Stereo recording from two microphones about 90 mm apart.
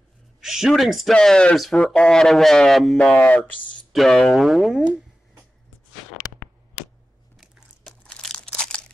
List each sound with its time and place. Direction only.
0.4 s speech: 5° right (ahead or behind)
1.1 s speech: 10° left (ahead or behind)
3.1 s speech: 15° left (ahead or behind)
3.9 s speech: 5° left (ahead or behind)
7.3 s crumpling: 5° left (ahead or behind)